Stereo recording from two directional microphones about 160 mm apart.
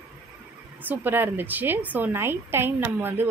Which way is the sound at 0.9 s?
15° right (ahead or behind).